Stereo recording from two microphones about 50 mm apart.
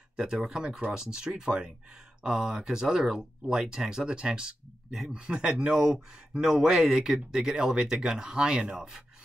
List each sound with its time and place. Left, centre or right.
0.1 s speech: centre